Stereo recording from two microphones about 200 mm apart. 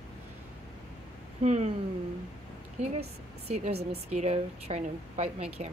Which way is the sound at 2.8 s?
35° right (ahead or behind).